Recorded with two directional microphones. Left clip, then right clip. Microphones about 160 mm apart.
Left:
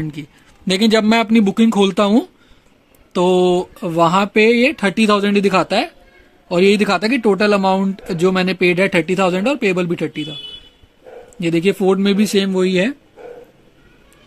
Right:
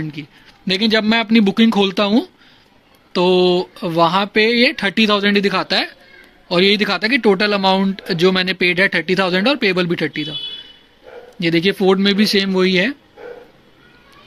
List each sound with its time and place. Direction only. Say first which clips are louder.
0.0 s speech: even; 30° left (ahead or behind); by 10.3 s 15° left (ahead or behind)
11.3 s speech: even; 15° left (ahead or behind)